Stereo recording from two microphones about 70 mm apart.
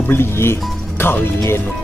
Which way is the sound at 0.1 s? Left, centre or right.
Left.